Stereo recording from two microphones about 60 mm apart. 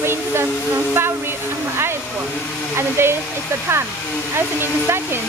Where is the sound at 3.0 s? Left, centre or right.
Right.